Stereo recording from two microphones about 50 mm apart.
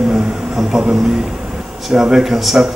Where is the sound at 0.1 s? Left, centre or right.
Centre.